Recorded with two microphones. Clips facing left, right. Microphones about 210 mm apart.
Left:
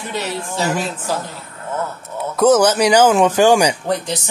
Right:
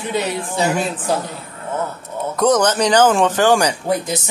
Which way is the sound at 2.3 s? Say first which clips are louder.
Left 3 dB; 5° left (ahead or behind).